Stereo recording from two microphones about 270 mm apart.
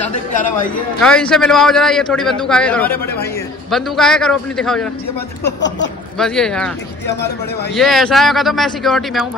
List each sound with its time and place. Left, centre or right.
0.1 s a man's voice: left
1.0 s a man's voice: centre
6.1 s a man's voice: centre
7.7 s a man's voice: centre